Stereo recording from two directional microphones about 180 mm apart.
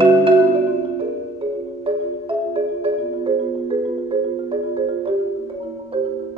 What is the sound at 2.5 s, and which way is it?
Music, 30° right (ahead or behind).